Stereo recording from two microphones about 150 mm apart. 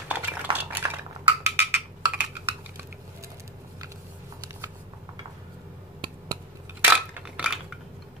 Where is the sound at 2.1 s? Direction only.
10° right (ahead or behind).